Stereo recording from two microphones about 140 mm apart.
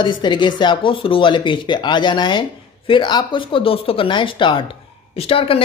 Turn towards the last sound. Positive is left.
turn(degrees=40)  # may be behind; listen again after turning